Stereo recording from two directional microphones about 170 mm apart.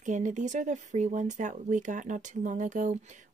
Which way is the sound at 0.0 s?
45° right (ahead or behind).